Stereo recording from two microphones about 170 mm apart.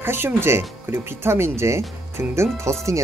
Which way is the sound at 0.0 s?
15° right (ahead or behind).